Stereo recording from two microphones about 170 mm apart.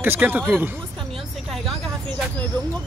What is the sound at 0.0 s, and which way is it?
Speech, 10° right (ahead or behind).